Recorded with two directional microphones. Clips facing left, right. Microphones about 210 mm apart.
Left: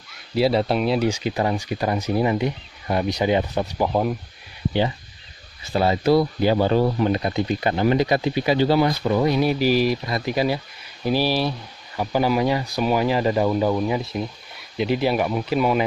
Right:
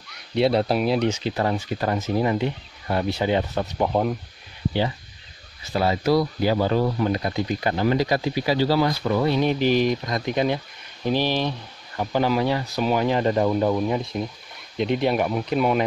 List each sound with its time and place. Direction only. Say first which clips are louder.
0.1 s speech: left 1 dB; centre (ahead or behind)
1.0 s speech: left 1 dB; 10° left (ahead or behind)
5.7 s speech: left 2 dB; 25° left (ahead or behind); by 15.8 s centre (ahead or behind)